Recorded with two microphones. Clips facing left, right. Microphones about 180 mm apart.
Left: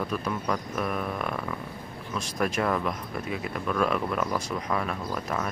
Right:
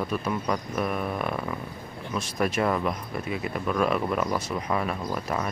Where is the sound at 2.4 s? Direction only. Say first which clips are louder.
Right 1 dB; 5° right (ahead or behind).